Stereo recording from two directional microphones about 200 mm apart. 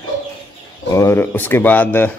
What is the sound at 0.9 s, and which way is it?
Speech, 15° left (ahead or behind).